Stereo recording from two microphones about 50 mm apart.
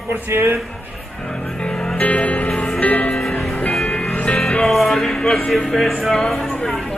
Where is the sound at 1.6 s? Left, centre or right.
Centre.